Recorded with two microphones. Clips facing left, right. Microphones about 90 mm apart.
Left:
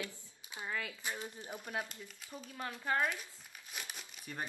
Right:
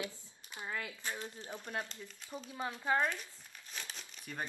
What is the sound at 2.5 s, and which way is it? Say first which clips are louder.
Speech: right 3 dB; 15° right (ahead or behind).